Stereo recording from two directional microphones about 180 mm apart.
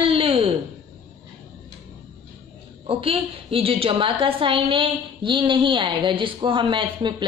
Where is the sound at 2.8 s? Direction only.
30° right (ahead or behind).